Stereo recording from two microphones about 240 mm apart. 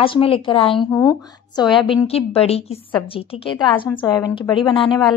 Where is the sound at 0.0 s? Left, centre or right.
Left.